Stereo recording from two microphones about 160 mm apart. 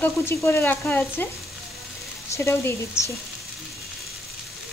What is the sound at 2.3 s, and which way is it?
Frying, 15° left (ahead or behind).